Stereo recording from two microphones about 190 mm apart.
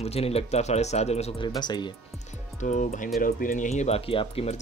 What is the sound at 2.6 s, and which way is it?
Speech, 40° left (ahead or behind).